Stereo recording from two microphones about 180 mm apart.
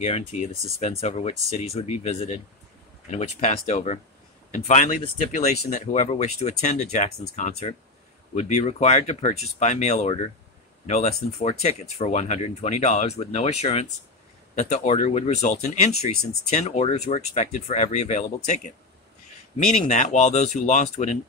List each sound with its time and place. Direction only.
0.0 s speech: 40° left (ahead or behind)
19.7 s speech: 40° left (ahead or behind)